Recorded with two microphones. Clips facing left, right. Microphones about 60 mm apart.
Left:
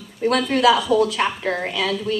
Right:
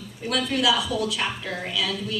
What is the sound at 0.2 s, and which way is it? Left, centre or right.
A woman's voice, left.